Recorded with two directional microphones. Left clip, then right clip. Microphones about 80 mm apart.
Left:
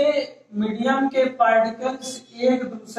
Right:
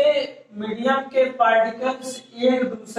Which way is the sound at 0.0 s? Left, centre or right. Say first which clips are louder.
Right 2 dB; right.